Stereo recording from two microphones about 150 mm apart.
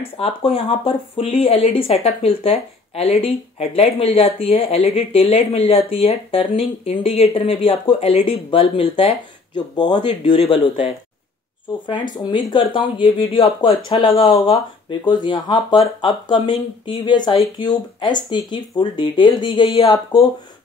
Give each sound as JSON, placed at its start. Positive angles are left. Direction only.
{"t": 0.2, "sound": "speech", "side_deg": 40}